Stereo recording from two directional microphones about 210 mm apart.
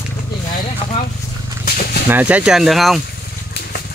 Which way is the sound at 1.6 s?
45° left (ahead or behind).